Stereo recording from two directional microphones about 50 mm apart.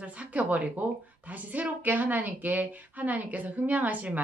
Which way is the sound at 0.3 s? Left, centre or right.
Right.